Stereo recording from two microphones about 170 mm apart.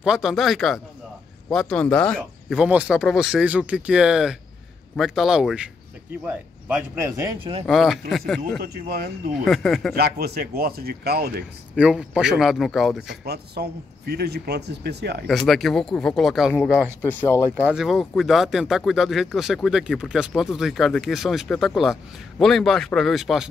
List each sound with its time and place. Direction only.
0.0 s speech: 5° right (ahead or behind)
6.2 s speech: 15° right (ahead or behind)
7.3 s speech: 30° right (ahead or behind)
7.6 s speech: centre (ahead or behind)
8.5 s speech: 65° right (ahead or behind)
9.4 s speech: centre (ahead or behind)
9.9 s speech: 65° right (ahead or behind)
11.7 s speech: 5° right (ahead or behind)
13.2 s a man's voice: 70° right (ahead or behind)
15.2 s speech: centre (ahead or behind)
17.0 s speech: 15° left (ahead or behind)
17.6 s speech: 5° right (ahead or behind)